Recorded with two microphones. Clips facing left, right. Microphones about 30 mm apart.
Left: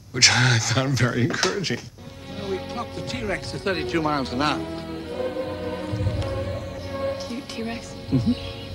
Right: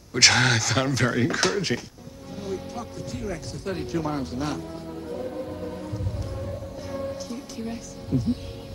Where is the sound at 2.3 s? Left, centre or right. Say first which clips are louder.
Left 3 dB; left.